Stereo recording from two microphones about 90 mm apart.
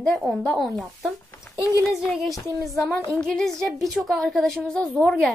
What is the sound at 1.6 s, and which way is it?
Speech, 35° left (ahead or behind).